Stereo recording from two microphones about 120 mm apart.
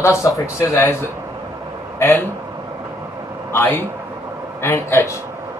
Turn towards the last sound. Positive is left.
turn(degrees=25)  # may be behind; listen again after turning